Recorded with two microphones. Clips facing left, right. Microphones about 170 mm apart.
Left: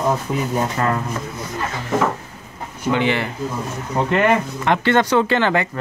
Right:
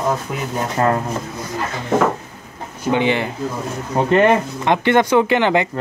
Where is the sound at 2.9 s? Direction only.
20° right (ahead or behind).